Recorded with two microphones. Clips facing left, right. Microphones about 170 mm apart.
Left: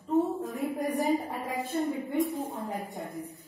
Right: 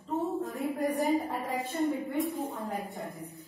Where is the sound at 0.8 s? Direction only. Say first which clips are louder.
Right 1 dB; 15° left (ahead or behind).